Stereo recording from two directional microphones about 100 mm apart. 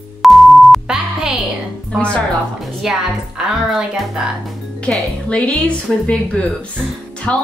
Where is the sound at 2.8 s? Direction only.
5° right (ahead or behind).